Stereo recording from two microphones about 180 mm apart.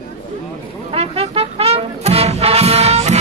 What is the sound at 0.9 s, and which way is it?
Music, 35° right (ahead or behind).